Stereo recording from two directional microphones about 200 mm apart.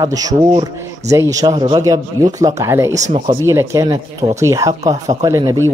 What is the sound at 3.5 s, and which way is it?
Speech, 15° right (ahead or behind).